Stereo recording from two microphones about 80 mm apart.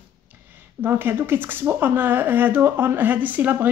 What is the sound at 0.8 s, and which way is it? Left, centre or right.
Speech, right.